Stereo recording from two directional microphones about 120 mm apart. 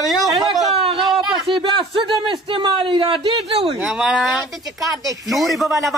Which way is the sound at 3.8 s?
5° right (ahead or behind).